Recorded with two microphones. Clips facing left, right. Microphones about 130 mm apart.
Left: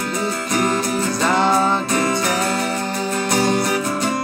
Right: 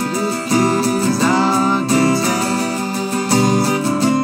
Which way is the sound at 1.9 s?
30° right (ahead or behind).